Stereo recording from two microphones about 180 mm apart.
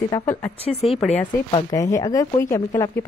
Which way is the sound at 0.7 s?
35° left (ahead or behind).